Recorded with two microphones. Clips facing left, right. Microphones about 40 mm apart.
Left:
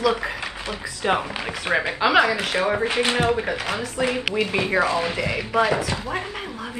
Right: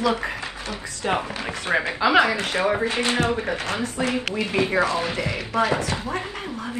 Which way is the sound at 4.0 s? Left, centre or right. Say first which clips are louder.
Left 3 dB; centre.